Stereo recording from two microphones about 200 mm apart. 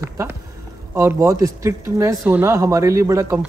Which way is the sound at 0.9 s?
15° right (ahead or behind).